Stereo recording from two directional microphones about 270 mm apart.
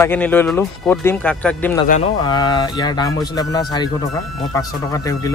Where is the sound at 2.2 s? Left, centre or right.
Centre.